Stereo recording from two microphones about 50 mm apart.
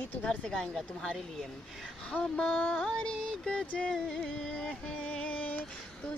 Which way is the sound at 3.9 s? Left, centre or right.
Centre.